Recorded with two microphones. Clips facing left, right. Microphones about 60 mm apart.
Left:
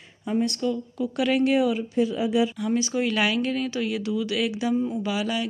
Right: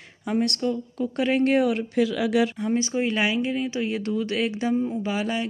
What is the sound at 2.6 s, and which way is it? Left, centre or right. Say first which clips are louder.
Speech: even; right.